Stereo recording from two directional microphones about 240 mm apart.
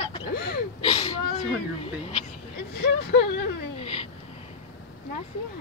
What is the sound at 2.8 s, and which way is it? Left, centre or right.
Speech, left.